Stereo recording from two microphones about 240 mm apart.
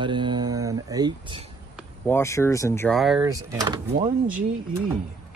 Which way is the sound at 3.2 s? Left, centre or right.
Centre.